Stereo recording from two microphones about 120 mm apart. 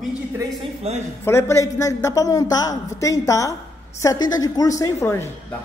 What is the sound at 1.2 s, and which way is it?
A woman's voice, 20° left (ahead or behind).